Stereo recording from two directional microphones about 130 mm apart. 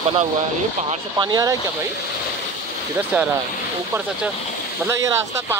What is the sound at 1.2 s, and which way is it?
Speech, 30° right (ahead or behind).